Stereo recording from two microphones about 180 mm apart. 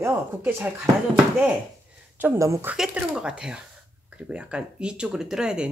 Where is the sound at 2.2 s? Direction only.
15° right (ahead or behind).